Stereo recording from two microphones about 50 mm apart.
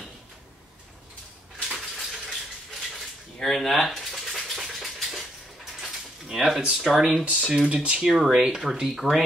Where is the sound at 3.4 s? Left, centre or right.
Centre.